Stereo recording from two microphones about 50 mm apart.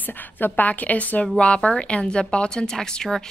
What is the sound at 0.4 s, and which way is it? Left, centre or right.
Speech, left.